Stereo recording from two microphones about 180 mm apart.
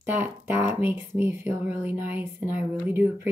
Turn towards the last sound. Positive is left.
turn(degrees=-10)  # may be behind; listen again after turning